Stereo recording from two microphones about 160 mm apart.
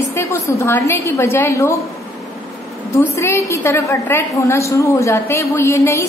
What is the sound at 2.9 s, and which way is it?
A woman's voice, 15° left (ahead or behind).